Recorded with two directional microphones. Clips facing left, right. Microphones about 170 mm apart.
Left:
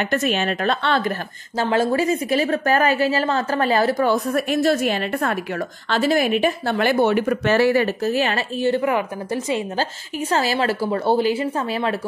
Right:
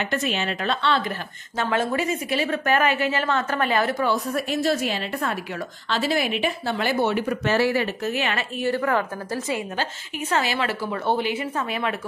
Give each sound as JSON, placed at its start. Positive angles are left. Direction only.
{"t": 0.0, "sound": "a woman's voice", "side_deg": 50}
{"t": 1.7, "sound": "a woman's voice", "side_deg": 30}
{"t": 8.0, "sound": "a woman's voice", "side_deg": 35}
{"t": 10.3, "sound": "a woman's voice", "side_deg": 35}